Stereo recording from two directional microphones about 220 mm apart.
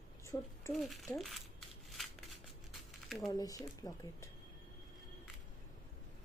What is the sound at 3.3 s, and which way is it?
Speech, 15° left (ahead or behind).